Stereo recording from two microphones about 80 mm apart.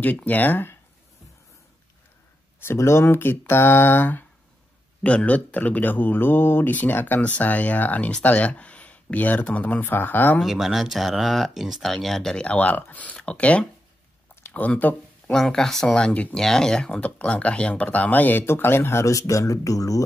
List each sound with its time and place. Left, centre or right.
0.0 s speech: left
2.6 s speech: left
10.4 s speech: centre
14.3 s a sound: left
15.3 s speech: centre
16.3 s speech: centre; by 20.0 s left